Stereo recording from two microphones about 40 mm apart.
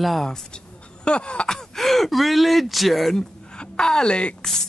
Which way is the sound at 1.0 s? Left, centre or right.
Left.